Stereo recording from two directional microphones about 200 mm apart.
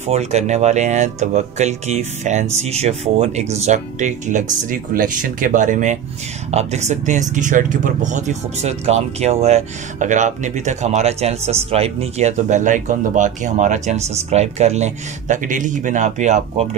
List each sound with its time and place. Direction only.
0.0 s speech: 35° right (ahead or behind)